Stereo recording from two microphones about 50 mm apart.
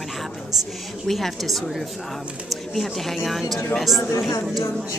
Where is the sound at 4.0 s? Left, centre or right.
Left.